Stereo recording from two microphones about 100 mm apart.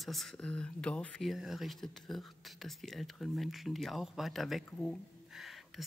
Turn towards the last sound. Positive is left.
turn(degrees=0)  # may be behind; listen again after turning